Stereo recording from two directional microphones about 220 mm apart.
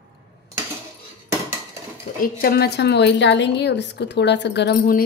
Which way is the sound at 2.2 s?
45° left (ahead or behind).